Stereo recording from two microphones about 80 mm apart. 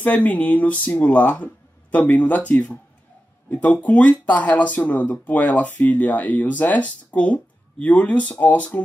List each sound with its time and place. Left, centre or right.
0.0 s speech: left